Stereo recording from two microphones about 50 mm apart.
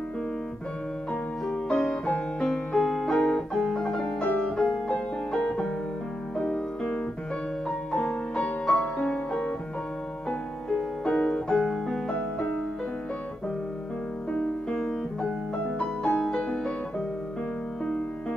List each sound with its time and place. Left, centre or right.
1.5 s music: centre
2.4 s piano: centre
4.3 s music: left
8.6 s music: left
10.7 s music: centre
11.5 s piano: centre
12.1 s music: left
14.3 s music: centre
16.1 s music: centre